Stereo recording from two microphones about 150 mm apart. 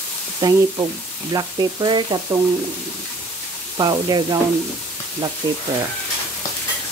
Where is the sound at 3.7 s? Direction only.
25° right (ahead or behind).